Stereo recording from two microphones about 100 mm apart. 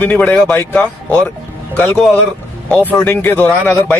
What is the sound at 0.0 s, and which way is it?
Speech, 15° left (ahead or behind).